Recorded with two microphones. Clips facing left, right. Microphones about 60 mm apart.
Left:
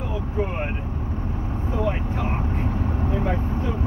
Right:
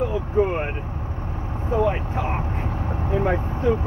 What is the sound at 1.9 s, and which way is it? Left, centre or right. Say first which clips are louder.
Vehicle: right 2 dB; right.